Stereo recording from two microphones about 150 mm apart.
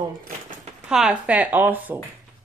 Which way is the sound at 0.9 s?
5° right (ahead or behind).